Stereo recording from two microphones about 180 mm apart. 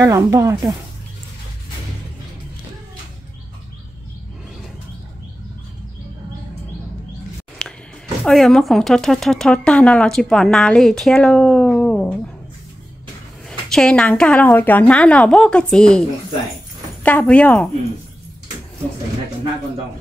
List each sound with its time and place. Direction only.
0.0 s speech: 20° right (ahead or behind)
7.6 s music: 5° left (ahead or behind)
8.3 s speech: centre (ahead or behind)
13.5 s speech: 5° left (ahead or behind)